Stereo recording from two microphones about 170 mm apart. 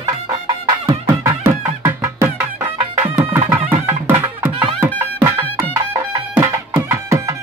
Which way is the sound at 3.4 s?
10° right (ahead or behind).